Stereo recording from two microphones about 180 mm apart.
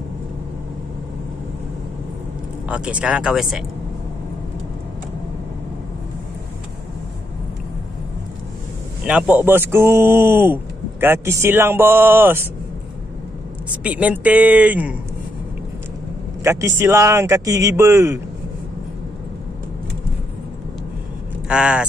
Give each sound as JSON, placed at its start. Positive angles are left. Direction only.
{"t": 2.7, "sound": "speech", "side_deg": -5}
{"t": 9.0, "sound": "speech", "side_deg": -5}
{"t": 13.7, "sound": "speech", "side_deg": -5}
{"t": 16.4, "sound": "speech", "side_deg": -15}
{"t": 21.5, "sound": "speech", "side_deg": -5}